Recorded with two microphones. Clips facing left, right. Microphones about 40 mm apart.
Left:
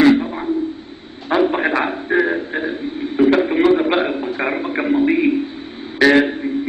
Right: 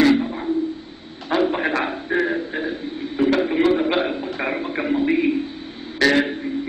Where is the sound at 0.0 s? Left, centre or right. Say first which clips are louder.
Left 4 dB; centre.